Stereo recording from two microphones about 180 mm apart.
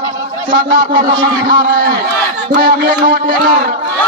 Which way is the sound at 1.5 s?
55° right (ahead or behind).